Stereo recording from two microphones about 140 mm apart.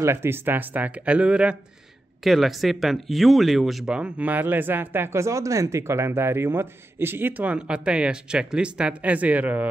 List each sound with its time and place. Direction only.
0.0 s speech: 20° right (ahead or behind)